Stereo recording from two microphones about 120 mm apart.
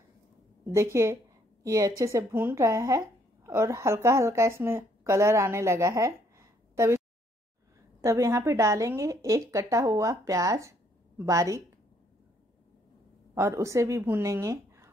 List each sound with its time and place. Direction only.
1.0 s a woman's voice: 25° right (ahead or behind)
8.0 s speech: 25° right (ahead or behind)
13.3 s speech: 25° right (ahead or behind)